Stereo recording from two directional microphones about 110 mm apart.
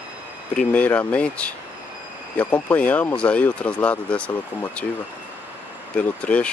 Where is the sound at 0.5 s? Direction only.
10° left (ahead or behind).